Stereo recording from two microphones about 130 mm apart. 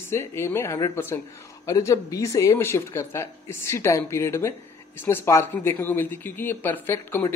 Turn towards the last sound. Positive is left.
turn(degrees=20)  # may be behind; listen again after turning